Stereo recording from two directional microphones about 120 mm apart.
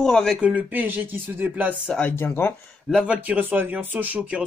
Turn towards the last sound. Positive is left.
turn(degrees=-10)  # may be behind; listen again after turning